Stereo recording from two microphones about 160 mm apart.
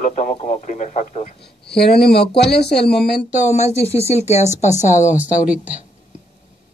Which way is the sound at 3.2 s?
50° left (ahead or behind).